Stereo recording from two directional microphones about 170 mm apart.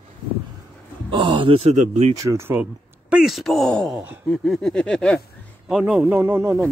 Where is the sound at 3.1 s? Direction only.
Centre (ahead or behind).